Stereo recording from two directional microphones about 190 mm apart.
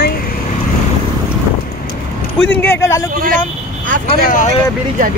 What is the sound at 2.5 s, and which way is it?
Speech, 10° left (ahead or behind).